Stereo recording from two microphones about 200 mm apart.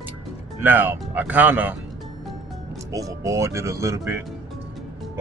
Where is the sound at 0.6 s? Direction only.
10° right (ahead or behind).